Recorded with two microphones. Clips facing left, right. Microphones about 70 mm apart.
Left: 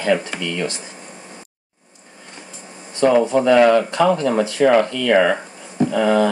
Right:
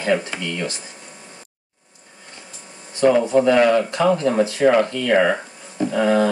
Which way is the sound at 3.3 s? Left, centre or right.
Left.